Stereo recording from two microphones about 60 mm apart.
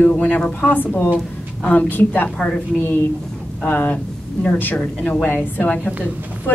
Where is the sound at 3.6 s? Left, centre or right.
Left.